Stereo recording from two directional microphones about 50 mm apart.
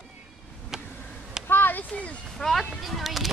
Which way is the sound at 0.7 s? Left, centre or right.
Centre.